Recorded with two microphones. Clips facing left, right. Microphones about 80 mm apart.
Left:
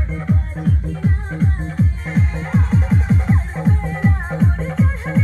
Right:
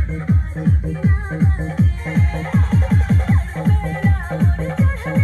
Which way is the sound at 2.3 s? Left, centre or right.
Left.